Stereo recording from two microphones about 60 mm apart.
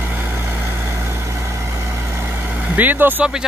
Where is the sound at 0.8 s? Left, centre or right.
Right.